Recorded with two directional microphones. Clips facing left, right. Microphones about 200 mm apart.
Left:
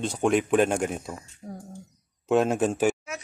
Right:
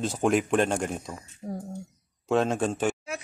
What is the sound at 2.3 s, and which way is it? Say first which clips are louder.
Speech: left 2 dB; 5° left (ahead or behind).